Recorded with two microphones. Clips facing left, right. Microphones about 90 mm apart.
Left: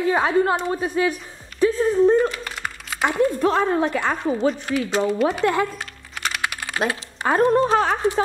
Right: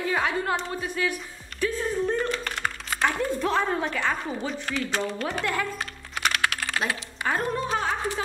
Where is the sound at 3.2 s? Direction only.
Centre (ahead or behind).